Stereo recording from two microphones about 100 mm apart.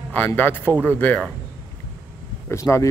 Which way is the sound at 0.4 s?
20° left (ahead or behind).